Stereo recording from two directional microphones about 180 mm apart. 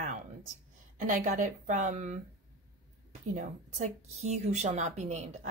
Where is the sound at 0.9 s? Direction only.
45° right (ahead or behind).